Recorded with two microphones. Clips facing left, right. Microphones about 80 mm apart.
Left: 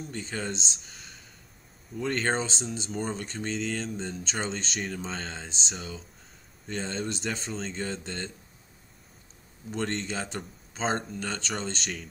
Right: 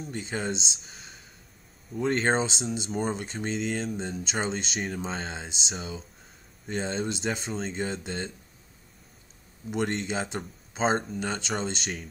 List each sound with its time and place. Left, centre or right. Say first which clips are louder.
0.1 s speech: right 4 dB; centre
0.7 s a sound: right 1 dB; centre
2.0 s speech: right 3 dB; centre
6.7 s speech: right 3 dB; centre
9.7 s speech: right 3 dB; centre